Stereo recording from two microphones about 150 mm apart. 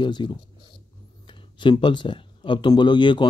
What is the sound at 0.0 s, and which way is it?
Speech, 30° left (ahead or behind).